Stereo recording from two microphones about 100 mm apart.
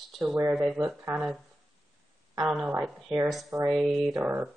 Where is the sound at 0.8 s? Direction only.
25° right (ahead or behind).